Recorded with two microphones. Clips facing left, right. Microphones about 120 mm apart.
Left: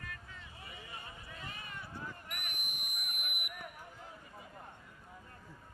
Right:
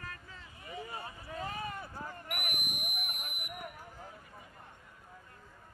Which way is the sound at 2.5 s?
15° right (ahead or behind).